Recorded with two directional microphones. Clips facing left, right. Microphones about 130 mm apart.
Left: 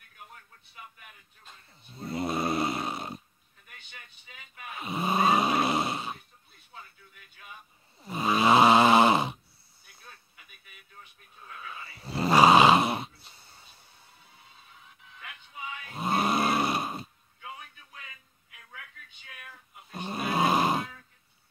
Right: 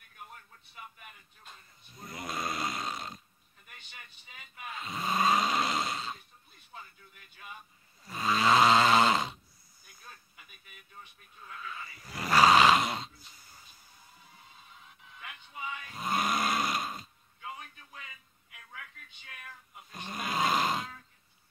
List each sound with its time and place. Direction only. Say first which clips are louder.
1.9 s snoring: left 9 dB; 30° left (ahead or behind)
4.7 s a sound: left 4 dB; 25° left (ahead or behind)
5.6 s grunt: left 4 dB; 25° left (ahead or behind)
8.0 s snoring: left 4 dB; 20° left (ahead or behind)
11.6 s snoring: left 2 dB; 25° left (ahead or behind)
13.2 s a sound: left 1 dB; 30° left (ahead or behind)
15.9 s snoring: left 5 dB; 30° left (ahead or behind)
19.9 s speech: left 6 dB; 30° left (ahead or behind)
20.3 s grunt: left 4 dB; 20° left (ahead or behind)